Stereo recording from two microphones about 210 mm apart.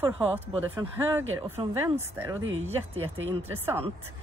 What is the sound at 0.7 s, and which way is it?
Speech, 10° right (ahead or behind).